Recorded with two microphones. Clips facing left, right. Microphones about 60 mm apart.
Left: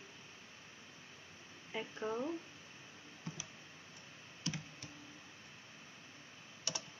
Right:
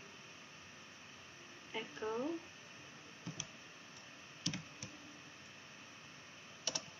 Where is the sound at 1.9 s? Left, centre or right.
Left.